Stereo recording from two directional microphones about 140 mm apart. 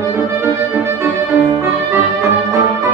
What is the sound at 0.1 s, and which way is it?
Music, 15° right (ahead or behind).